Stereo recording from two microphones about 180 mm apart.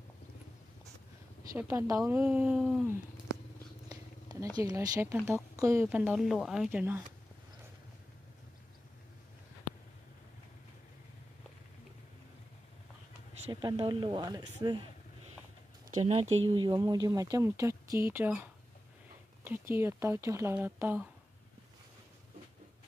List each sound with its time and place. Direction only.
1.5 s speech: 15° right (ahead or behind)
2.6 s a sound: 5° right (ahead or behind)
3.9 s a sound: 20° right (ahead or behind)
4.6 s speech: 20° right (ahead or behind)
13.5 s speech: 25° right (ahead or behind)
15.9 s speech: 35° right (ahead or behind)
16.4 s speech: 25° right (ahead or behind)
19.4 s speech: 10° right (ahead or behind)